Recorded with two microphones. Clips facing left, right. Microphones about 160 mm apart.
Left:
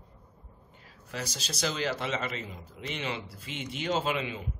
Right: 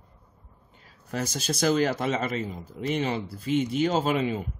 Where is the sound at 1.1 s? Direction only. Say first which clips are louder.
Right 8 dB; 50° right (ahead or behind).